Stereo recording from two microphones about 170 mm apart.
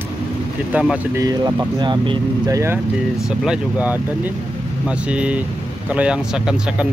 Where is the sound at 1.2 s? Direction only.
20° right (ahead or behind).